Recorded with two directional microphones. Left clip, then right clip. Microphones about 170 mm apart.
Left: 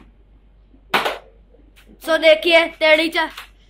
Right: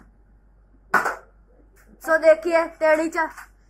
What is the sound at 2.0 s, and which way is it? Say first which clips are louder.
A woman's voice: left 3 dB; 20° left (ahead or behind).